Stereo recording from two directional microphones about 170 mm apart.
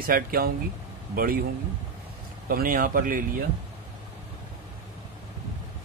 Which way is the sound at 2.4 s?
55° right (ahead or behind).